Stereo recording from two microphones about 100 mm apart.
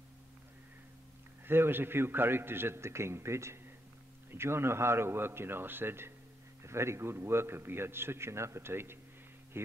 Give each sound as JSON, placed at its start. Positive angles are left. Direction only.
{"t": 1.4, "sound": "a man's voice", "side_deg": -20}